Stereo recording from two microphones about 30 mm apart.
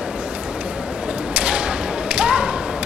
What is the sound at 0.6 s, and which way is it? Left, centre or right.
Whip, right.